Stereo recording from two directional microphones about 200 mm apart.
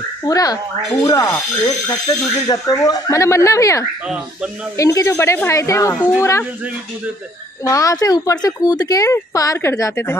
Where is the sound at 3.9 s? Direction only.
5° right (ahead or behind).